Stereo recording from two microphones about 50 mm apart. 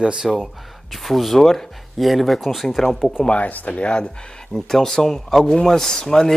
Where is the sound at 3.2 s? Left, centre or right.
Left.